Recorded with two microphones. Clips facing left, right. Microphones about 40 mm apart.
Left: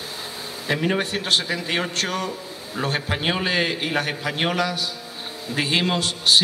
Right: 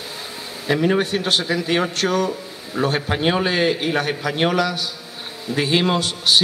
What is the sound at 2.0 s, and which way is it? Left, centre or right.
Speech, right.